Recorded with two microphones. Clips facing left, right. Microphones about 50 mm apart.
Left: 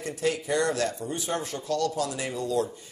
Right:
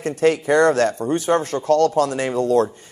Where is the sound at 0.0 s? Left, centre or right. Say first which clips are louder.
Right 10 dB; right.